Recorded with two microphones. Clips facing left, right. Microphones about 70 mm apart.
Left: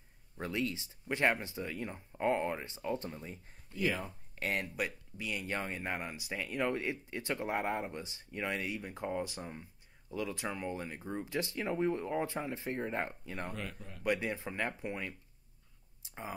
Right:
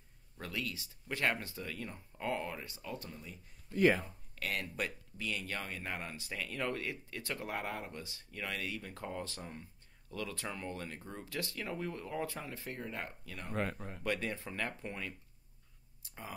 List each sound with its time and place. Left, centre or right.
0.4 s speech: left
3.7 s speech: right
4.4 s speech: left
4.7 s speech: centre
13.6 s speech: right
14.0 s speech: centre
16.0 s a sound: left